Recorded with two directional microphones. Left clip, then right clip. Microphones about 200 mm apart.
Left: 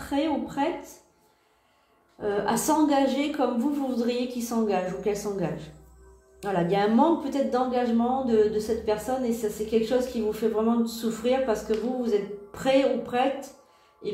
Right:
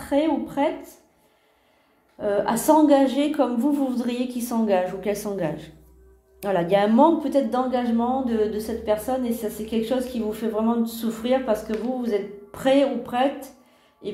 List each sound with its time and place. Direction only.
0.0 s a woman's voice: 40° right (ahead or behind)
2.1 s speech: 45° right (ahead or behind)
14.0 s heart sounds: 45° right (ahead or behind)